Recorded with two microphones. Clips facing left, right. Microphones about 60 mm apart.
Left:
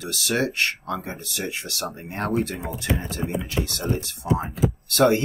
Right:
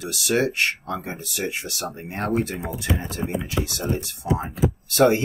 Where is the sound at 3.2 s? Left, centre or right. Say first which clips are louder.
Right 1 dB; centre.